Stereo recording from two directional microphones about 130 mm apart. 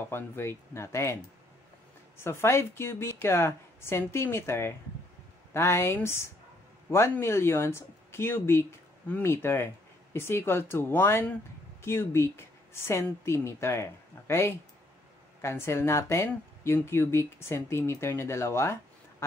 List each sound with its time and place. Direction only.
0.1 s speech: 20° left (ahead or behind)